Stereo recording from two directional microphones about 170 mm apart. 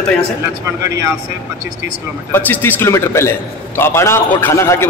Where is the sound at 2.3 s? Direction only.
10° left (ahead or behind).